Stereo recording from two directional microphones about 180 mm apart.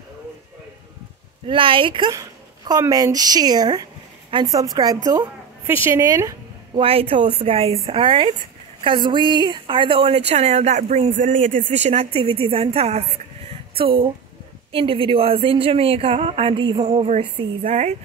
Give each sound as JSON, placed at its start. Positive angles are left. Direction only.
{"t": 1.5, "sound": "a woman's voice", "side_deg": -30}
{"t": 6.8, "sound": "a woman's voice", "side_deg": -30}
{"t": 13.5, "sound": "a sound", "side_deg": -30}
{"t": 14.7, "sound": "a woman's voice", "side_deg": -30}